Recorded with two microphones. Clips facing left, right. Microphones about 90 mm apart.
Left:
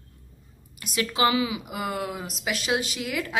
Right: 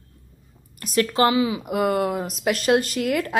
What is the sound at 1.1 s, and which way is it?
Speech, 35° right (ahead or behind).